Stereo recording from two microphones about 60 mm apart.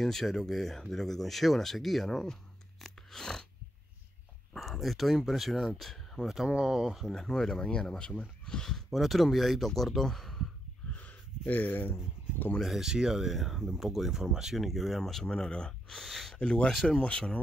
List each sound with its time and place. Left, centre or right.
0.0 s speech: centre
2.8 s crunch: centre
4.6 s speech: centre
6.2 s speech: centre
7.1 s speech: centre
10.9 s a sound: left
12.5 s speech: centre
16.0 s speech: centre
16.3 s speech: centre